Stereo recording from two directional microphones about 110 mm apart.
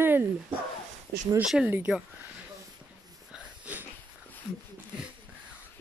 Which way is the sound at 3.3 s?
15° right (ahead or behind).